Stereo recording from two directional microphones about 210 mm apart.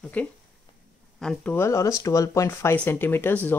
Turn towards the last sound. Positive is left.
turn(degrees=10)  # may be behind; listen again after turning